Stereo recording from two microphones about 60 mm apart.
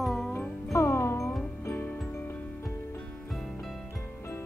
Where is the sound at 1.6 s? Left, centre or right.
Left.